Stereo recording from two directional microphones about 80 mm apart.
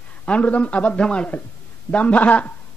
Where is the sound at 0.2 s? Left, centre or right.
Centre.